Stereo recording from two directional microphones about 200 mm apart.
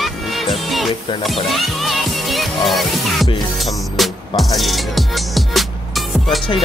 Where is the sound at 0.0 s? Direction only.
Centre (ahead or behind).